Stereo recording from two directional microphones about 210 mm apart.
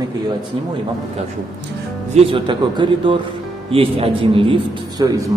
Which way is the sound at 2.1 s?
25° right (ahead or behind).